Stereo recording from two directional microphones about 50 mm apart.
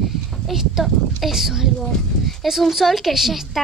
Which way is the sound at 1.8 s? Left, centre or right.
Centre.